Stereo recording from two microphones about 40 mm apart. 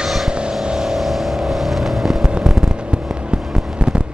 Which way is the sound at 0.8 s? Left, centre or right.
Centre.